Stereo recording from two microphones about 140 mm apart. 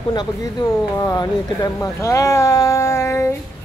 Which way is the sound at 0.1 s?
30° left (ahead or behind).